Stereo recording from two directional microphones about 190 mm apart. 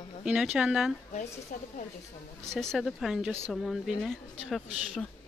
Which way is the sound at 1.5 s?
45° left (ahead or behind).